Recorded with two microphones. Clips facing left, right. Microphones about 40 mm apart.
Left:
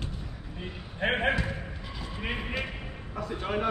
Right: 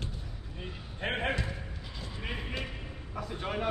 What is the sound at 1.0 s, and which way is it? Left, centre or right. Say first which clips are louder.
Speech: left 6 dB; left.